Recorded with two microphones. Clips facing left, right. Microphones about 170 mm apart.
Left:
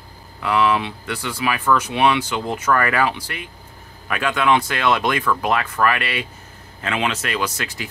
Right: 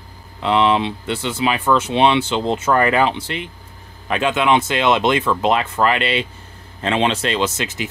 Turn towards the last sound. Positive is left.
turn(degrees=-20)  # may be behind; listen again after turning